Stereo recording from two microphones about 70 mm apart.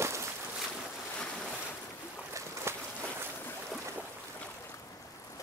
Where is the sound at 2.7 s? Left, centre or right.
Right.